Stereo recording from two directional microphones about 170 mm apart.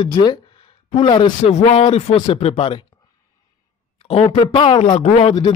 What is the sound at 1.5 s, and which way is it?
A man's voice, 40° left (ahead or behind).